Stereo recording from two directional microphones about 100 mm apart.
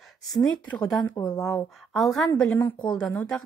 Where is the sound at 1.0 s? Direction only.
35° left (ahead or behind).